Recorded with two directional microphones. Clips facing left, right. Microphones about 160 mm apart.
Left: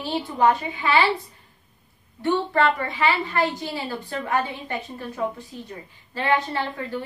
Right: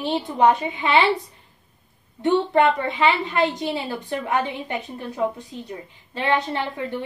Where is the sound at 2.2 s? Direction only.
20° right (ahead or behind).